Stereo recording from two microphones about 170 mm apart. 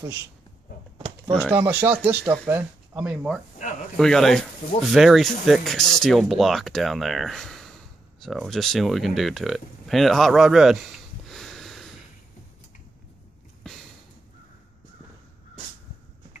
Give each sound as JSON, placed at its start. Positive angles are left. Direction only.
{"t": 0.9, "sound": "a sound", "side_deg": -30}
{"t": 1.4, "sound": "speech", "side_deg": -10}
{"t": 11.2, "sound": "wheeze", "side_deg": 0}